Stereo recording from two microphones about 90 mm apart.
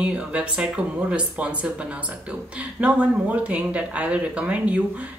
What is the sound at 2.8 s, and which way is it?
Speech, 15° right (ahead or behind).